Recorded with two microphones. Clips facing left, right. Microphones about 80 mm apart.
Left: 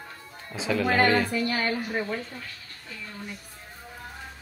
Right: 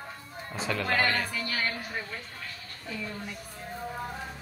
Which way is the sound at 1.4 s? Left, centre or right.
Left.